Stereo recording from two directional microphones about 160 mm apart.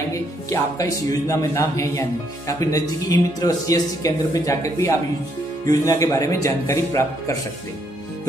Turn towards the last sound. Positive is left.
turn(degrees=20)  # may be behind; listen again after turning